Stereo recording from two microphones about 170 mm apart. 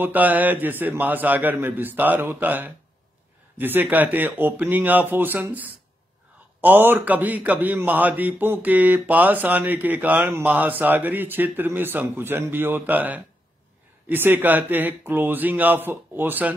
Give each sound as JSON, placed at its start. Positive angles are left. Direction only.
{"t": 0.0, "sound": "a man's voice", "side_deg": -10}